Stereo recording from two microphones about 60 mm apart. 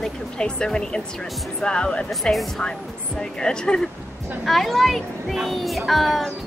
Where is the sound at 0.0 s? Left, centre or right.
Centre.